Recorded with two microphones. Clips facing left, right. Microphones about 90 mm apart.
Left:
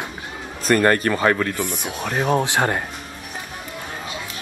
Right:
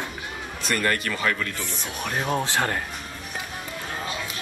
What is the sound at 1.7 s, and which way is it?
Speech, 15° left (ahead or behind).